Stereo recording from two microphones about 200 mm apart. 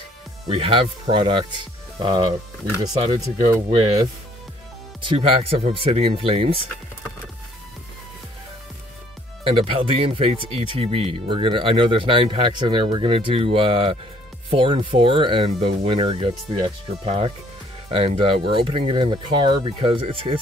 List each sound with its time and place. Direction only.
0.5 s speech: 25° right (ahead or behind)
9.4 s speech: 25° right (ahead or behind)